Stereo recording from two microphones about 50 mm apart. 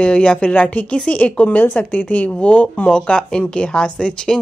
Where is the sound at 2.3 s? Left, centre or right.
Centre.